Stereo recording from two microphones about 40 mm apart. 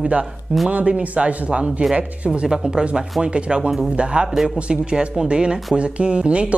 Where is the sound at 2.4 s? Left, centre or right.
Centre.